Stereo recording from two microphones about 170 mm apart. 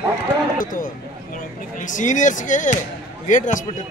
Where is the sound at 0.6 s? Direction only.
55° left (ahead or behind).